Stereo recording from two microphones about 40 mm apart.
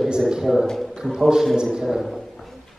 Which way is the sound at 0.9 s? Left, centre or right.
Centre.